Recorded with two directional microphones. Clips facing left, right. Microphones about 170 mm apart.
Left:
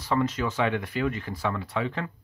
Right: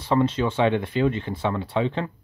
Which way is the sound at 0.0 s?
30° right (ahead or behind).